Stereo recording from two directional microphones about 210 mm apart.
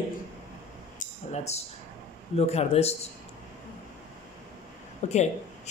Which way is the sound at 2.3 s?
30° left (ahead or behind).